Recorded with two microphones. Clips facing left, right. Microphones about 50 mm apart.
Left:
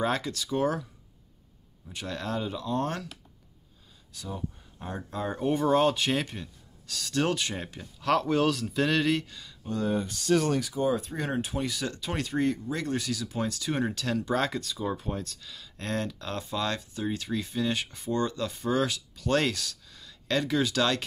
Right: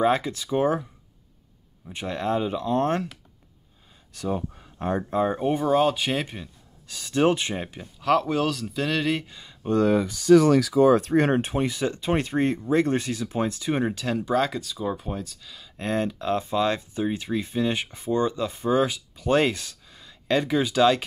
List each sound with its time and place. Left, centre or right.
0.0 s speech: centre
1.9 s speech: right
4.3 s speech: right
5.1 s speech: right
8.0 s speech: centre; by 9.6 s right
9.6 s a sound: right
10.6 s speech: right; by 21.0 s centre